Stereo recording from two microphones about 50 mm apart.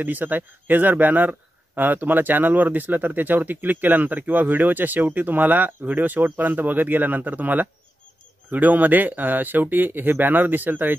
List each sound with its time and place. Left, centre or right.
0.0 s speech: right